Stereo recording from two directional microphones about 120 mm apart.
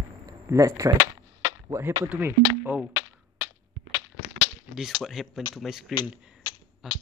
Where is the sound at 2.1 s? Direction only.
15° right (ahead or behind).